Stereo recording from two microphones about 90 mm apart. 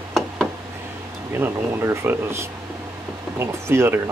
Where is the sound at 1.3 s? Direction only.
25° right (ahead or behind).